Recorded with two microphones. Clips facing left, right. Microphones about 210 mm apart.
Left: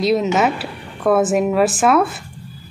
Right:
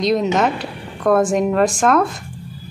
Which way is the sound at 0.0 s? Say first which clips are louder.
Even; 5° left (ahead or behind).